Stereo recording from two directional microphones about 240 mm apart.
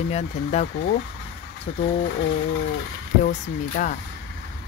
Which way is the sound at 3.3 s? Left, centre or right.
Left.